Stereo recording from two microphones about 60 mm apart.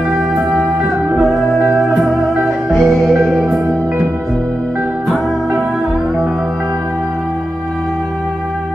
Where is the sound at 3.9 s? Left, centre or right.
Centre.